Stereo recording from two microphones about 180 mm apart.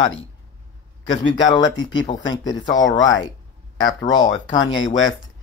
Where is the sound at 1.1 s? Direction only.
25° left (ahead or behind).